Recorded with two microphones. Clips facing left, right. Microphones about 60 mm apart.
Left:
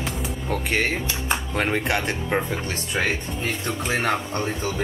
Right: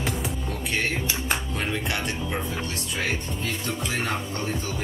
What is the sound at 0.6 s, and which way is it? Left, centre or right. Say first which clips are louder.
Speech: left 2 dB; left.